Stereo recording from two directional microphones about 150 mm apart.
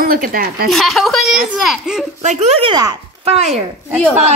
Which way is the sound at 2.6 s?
30° right (ahead or behind).